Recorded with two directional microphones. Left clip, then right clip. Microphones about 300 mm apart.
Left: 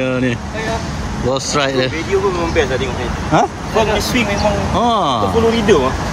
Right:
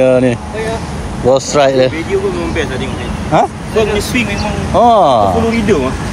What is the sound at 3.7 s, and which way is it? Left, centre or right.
Speech, left.